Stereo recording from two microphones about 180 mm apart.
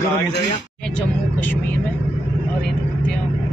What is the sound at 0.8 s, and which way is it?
Vehicle, 5° left (ahead or behind).